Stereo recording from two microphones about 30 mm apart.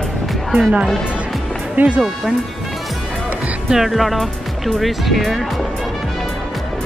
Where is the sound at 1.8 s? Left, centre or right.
Right.